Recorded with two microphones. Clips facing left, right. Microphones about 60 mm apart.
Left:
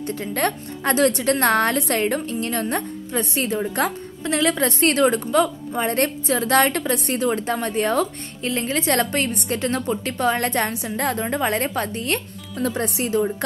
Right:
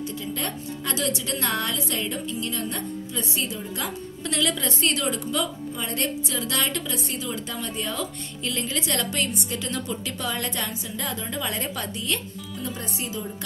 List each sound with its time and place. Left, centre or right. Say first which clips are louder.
0.0 s a woman's voice: left 7 dB; left
4.2 s a woman's voice: left 6 dB; left
4.6 s a woman's voice: left 8 dB; left
7.0 s a woman's voice: left 9 dB; left
8.5 s a woman's voice: left 7 dB; left
12.5 s speech: left 10 dB; left